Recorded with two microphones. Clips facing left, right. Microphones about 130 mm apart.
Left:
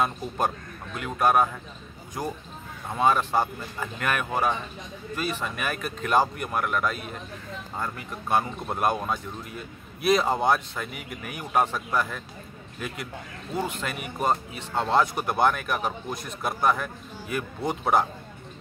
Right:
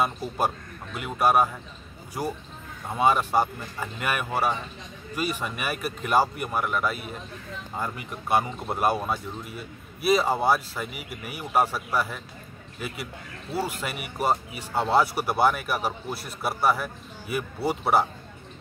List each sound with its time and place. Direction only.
0.9 s speech: 10° right (ahead or behind)